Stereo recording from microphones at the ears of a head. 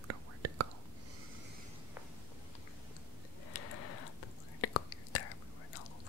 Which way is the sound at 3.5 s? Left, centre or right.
Left.